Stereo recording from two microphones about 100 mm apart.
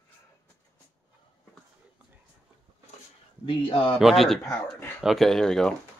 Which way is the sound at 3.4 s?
60° left (ahead or behind).